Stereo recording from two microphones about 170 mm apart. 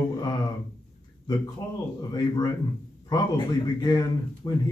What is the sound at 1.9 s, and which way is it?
A man's voice, 25° left (ahead or behind).